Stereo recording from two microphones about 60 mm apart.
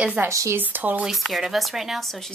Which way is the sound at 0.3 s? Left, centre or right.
Right.